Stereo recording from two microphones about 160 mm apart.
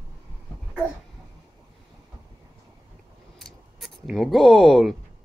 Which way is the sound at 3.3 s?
Centre (ahead or behind).